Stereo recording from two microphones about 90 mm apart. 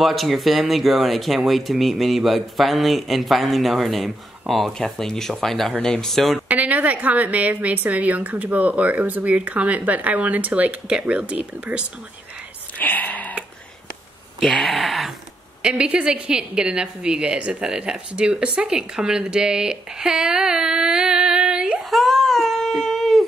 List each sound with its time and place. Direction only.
0.0 s speech: centre (ahead or behind)
6.5 s a woman's voice: 15° right (ahead or behind)
12.7 s a sound: 20° left (ahead or behind)
14.4 s speech: 5° left (ahead or behind)
15.6 s a woman's voice: 10° right (ahead or behind)
21.9 s a sound: 5° left (ahead or behind)